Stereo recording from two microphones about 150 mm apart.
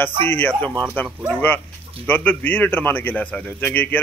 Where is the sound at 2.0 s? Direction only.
10° left (ahead or behind).